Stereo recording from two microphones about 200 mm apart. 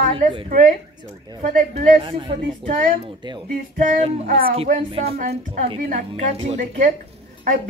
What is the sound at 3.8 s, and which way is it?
Speech, 40° right (ahead or behind).